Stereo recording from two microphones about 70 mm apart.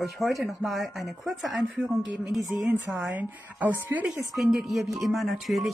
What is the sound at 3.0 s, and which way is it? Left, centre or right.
Speech, right.